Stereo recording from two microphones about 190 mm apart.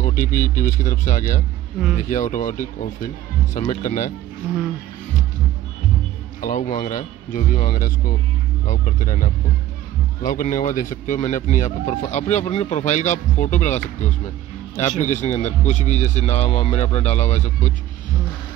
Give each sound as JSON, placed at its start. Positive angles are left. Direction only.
{"t": 0.0, "sound": "a man's voice", "side_deg": 45}
{"t": 6.4, "sound": "a man's voice", "side_deg": 45}